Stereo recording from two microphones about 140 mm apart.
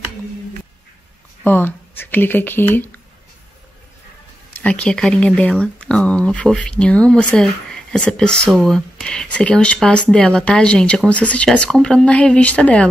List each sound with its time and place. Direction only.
1.4 s speech: 15° left (ahead or behind)
4.6 s speech: 10° left (ahead or behind)